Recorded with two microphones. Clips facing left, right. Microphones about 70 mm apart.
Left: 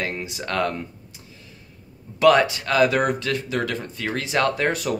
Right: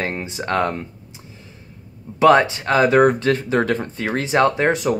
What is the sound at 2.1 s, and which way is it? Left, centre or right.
Speech, right.